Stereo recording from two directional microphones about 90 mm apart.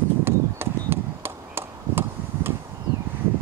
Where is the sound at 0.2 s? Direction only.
25° right (ahead or behind).